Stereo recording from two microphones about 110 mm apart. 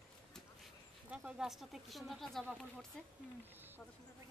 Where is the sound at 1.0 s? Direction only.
10° right (ahead or behind); by 3.1 s 5° left (ahead or behind).